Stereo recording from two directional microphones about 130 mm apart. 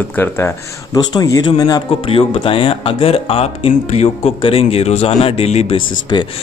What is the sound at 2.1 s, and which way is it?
Speech, 45° left (ahead or behind).